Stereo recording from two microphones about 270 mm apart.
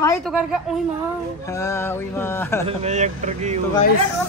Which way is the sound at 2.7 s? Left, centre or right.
Right.